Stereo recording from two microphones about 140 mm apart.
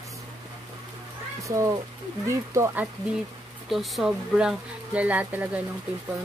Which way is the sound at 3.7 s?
Centre (ahead or behind).